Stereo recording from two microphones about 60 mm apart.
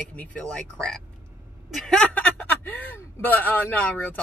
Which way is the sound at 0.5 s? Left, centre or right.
Centre.